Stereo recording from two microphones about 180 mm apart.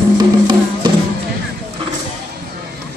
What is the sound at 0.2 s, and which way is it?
Music, 25° right (ahead or behind).